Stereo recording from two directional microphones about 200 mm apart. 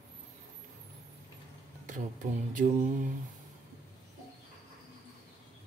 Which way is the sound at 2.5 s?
40° right (ahead or behind).